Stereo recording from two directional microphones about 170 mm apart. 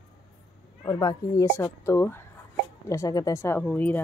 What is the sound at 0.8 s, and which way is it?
Speech, 20° left (ahead or behind).